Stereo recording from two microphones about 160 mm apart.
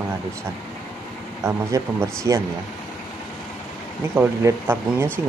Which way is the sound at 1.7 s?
20° right (ahead or behind).